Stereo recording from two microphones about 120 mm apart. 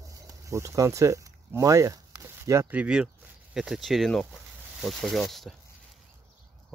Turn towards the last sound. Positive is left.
turn(degrees=0)  # may be behind; listen again after turning